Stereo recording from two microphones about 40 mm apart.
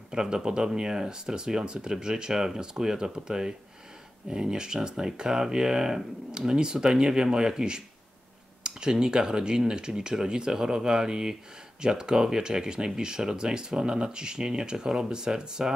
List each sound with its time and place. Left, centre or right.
0.1 s speech: centre
8.6 s a sound: centre
9.0 s speech: centre